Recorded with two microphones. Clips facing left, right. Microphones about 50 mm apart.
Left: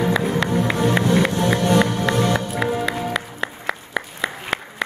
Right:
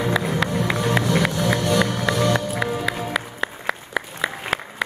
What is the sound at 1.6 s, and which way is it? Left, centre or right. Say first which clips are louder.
Music: left 4 dB; left.